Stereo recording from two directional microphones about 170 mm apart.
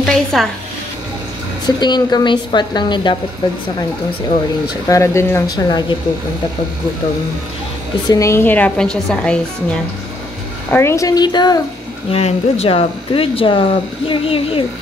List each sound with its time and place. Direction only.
0.0 s a woman's voice: centre (ahead or behind)
1.8 s a woman's voice: 25° left (ahead or behind)
4.8 s a woman's voice: 15° left (ahead or behind)
8.1 s a woman's voice: 20° left (ahead or behind)
10.7 s a woman's voice: 15° left (ahead or behind)
12.1 s speech: 35° left (ahead or behind)